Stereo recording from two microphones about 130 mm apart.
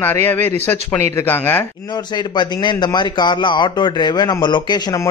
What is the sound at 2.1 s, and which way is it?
A man's voice, 35° left (ahead or behind).